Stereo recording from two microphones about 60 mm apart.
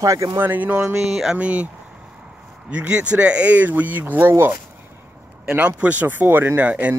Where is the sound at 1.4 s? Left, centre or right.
Right.